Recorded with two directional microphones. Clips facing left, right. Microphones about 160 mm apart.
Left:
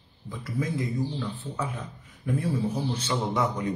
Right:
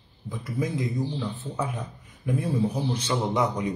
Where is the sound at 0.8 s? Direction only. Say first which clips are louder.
Right 1 dB; 20° right (ahead or behind).